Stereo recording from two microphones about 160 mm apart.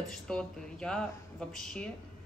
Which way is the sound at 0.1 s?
5° left (ahead or behind).